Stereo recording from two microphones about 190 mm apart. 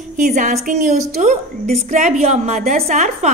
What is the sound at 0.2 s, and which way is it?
A woman's voice, 40° right (ahead or behind).